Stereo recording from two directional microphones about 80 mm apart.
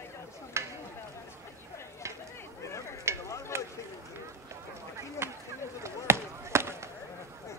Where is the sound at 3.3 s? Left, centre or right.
Left.